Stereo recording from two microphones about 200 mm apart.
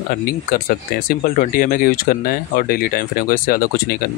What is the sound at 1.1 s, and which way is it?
Speech, 45° left (ahead or behind).